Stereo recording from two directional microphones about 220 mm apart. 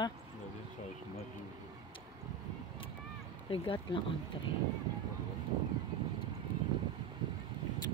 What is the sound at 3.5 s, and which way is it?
Speech, 25° left (ahead or behind).